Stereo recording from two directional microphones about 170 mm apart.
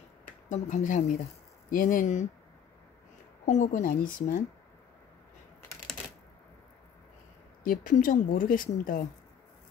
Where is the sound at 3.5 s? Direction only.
45° left (ahead or behind).